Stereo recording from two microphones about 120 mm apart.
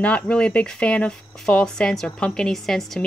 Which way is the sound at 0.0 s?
10° left (ahead or behind).